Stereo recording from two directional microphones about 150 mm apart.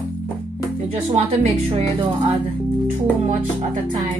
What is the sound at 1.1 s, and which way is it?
Speech, 45° right (ahead or behind).